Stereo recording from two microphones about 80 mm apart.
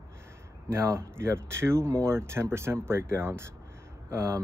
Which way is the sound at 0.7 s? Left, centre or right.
Right.